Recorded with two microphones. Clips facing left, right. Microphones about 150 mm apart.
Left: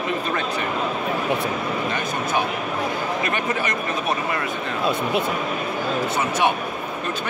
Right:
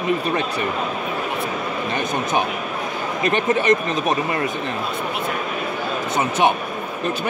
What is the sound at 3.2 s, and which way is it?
Speech, 25° right (ahead or behind).